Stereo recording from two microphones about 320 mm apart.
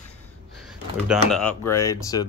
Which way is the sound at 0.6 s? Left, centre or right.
Centre.